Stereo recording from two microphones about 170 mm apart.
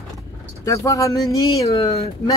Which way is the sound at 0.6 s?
20° left (ahead or behind).